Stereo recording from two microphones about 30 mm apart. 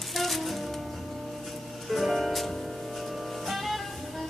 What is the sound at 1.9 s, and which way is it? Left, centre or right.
Music, centre.